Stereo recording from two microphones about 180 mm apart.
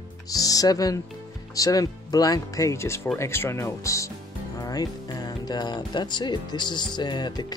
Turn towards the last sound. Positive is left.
turn(degrees=25)  # may be behind; listen again after turning